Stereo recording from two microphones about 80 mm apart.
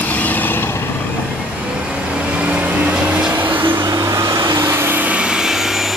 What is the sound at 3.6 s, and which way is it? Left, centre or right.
Vehicle, right.